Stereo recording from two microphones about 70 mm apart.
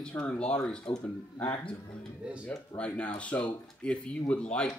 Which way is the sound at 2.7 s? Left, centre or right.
Centre.